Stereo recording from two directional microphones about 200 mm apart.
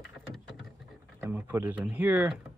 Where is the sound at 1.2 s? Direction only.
10° right (ahead or behind).